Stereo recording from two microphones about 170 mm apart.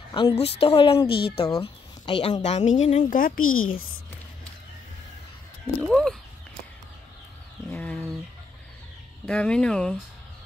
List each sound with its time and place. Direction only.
0.1 s speech: 30° left (ahead or behind)
1.0 s speech: 70° left (ahead or behind)
1.6 s a woman's voice: 35° left (ahead or behind); by 3.8 s 55° left (ahead or behind)
5.8 s speech: 5° left (ahead or behind)
7.7 s a sound: 10° left (ahead or behind)
9.2 s speech: 5° left (ahead or behind)